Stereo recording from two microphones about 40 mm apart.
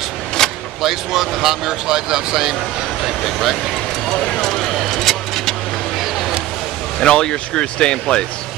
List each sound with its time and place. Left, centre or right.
0.4 s vehicle: centre
0.8 s speech: centre
4.1 s vehicle: centre
7.1 s speech: left